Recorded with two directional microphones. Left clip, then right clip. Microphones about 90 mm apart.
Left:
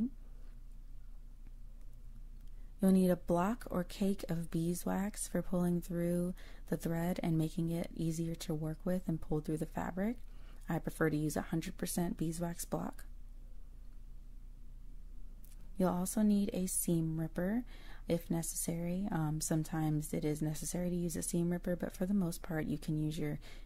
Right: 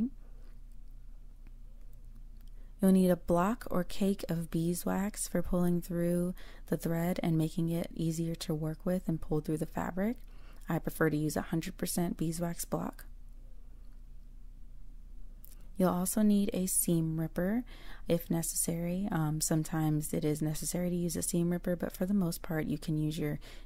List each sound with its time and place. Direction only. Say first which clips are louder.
2.8 s speech: right 4 dB; 20° right (ahead or behind)
15.8 s speech: right 4 dB; 25° right (ahead or behind)